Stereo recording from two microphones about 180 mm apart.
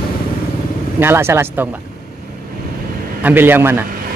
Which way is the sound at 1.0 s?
15° right (ahead or behind).